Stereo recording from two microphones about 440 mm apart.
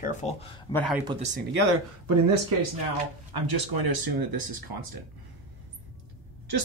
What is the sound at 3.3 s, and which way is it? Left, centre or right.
Speech, right.